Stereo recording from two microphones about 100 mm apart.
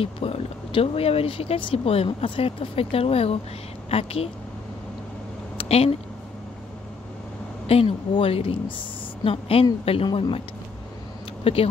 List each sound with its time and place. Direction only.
0.0 s speech: 75° left (ahead or behind)
5.6 s speech: 80° left
7.6 s speech: 90° left
8.1 s speech: 70° left (ahead or behind)
11.4 s speech: 65° left (ahead or behind)